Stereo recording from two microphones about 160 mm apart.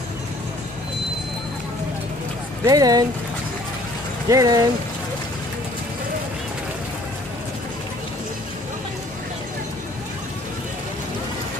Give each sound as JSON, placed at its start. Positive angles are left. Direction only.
{"t": 2.6, "sound": "speech", "side_deg": -25}
{"t": 4.3, "sound": "speech", "side_deg": -20}